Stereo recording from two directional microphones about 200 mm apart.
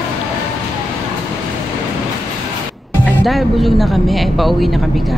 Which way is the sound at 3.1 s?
Centre (ahead or behind).